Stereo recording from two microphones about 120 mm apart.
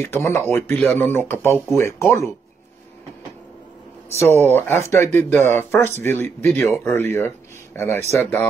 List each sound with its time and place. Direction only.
0.0 s speech: 20° left (ahead or behind)
4.2 s speech: 20° left (ahead or behind)